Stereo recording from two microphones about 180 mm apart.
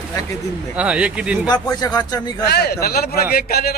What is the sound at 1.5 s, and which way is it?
Speech, 20° left (ahead or behind).